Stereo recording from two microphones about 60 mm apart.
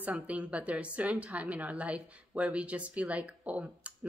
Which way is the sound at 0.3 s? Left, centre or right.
Right.